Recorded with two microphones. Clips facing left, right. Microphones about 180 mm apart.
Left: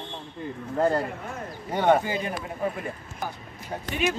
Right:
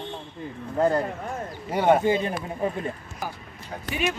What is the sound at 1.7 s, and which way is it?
Speech, 10° right (ahead or behind).